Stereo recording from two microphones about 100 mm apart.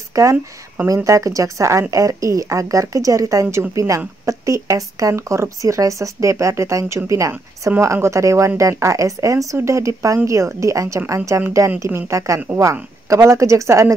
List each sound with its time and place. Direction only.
0.1 s speech: 30° right (ahead or behind)